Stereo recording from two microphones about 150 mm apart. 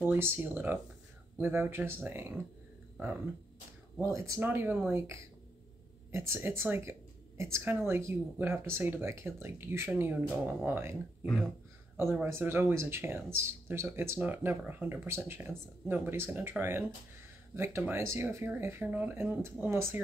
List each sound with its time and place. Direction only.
0.0 s speech: 15° right (ahead or behind)
4.1 s speech: 15° right (ahead or behind)
12.0 s speech: 15° right (ahead or behind)